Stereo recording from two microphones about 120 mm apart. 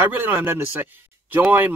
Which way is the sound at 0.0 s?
15° right (ahead or behind).